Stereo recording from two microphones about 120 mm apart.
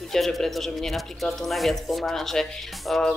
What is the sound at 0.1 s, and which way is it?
Speech, 5° left (ahead or behind).